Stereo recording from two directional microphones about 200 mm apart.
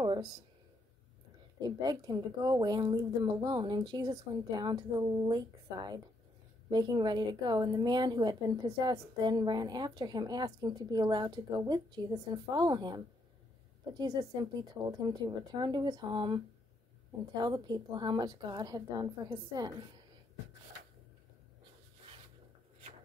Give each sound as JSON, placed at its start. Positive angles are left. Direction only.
{"t": 0.0, "sound": "a sound", "side_deg": -20}
{"t": 1.6, "sound": "a woman's voice", "side_deg": -20}
{"t": 17.4, "sound": "a woman's voice", "side_deg": -20}